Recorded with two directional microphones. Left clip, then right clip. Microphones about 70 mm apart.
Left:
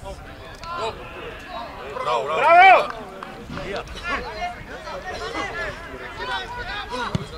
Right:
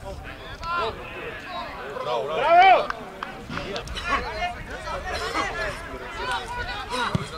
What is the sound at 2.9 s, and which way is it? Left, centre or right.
Run, right.